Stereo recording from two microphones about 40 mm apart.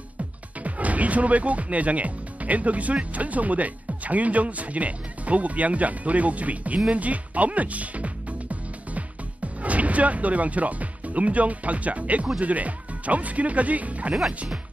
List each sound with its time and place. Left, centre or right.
0.7 s speech: right
6.9 s music: right
12.4 s speech: right